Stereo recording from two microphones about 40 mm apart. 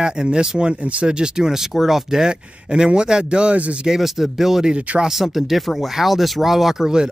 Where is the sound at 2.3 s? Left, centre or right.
Right.